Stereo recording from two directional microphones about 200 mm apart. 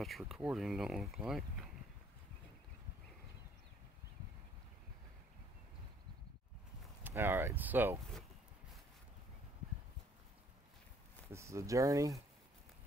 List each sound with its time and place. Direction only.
0.0 s speech: centre (ahead or behind)
7.0 s speech: 10° right (ahead or behind)
11.2 s speech: 15° right (ahead or behind)